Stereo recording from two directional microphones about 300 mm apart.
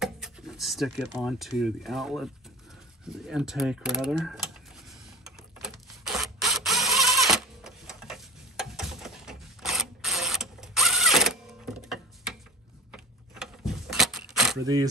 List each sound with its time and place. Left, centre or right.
0.0 s speech: centre
3.1 s mechanisms: centre
12.9 s keys jangling: centre
14.6 s speech: centre